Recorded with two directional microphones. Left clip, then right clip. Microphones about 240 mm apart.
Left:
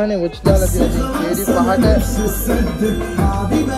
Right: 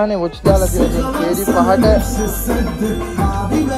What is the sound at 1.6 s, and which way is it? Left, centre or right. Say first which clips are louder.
Music: right 3 dB; right.